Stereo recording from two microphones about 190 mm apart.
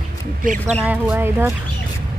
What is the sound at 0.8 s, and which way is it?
Speech, 10° right (ahead or behind).